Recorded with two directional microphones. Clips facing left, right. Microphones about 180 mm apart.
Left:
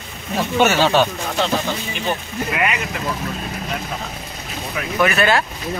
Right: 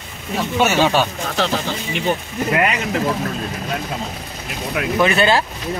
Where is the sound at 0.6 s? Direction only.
10° right (ahead or behind).